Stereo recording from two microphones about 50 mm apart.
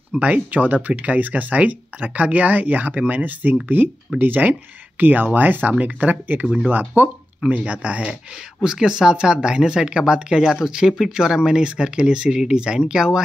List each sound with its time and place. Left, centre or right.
0.2 s speech: right
8.6 s speech: centre